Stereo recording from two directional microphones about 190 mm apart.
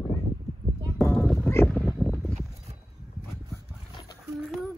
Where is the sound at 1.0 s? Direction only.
5° left (ahead or behind).